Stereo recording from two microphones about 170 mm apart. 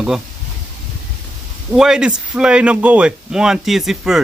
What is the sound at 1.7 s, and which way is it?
Speech, 5° right (ahead or behind).